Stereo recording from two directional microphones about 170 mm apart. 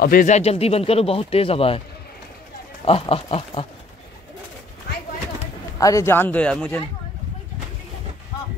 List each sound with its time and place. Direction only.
0.0 s speech: 60° left (ahead or behind)
0.3 s speech: 35° left (ahead or behind)
2.8 s speech: 35° left (ahead or behind)
5.8 s speech: 20° left (ahead or behind)